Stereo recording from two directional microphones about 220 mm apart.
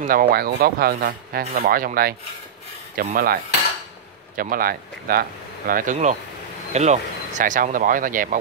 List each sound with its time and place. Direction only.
0.0 s speech: 40° right (ahead or behind)
4.4 s speech: 40° right (ahead or behind)